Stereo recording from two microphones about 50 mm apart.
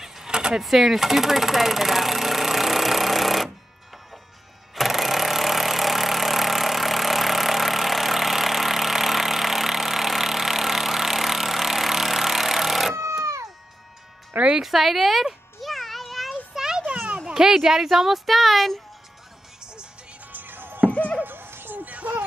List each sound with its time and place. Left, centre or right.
0.0 s a sound: centre
0.6 s engine: centre
4.7 s vehicle: centre
12.9 s cat: right
14.6 s music: centre; by 17.2 s right
17.2 s speech: centre
19.6 s music: centre
20.2 s music: right
20.9 s music: left
21.2 s music: right
21.7 s a sound: right